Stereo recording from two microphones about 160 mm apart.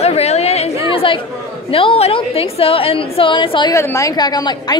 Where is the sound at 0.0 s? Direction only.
40° left (ahead or behind).